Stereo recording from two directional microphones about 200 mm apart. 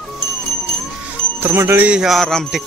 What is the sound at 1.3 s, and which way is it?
Speech, 10° right (ahead or behind).